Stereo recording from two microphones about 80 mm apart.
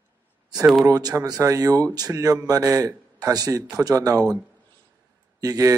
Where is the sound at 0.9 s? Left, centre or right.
Right.